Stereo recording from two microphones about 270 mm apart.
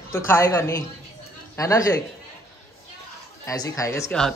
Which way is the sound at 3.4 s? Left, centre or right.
Centre.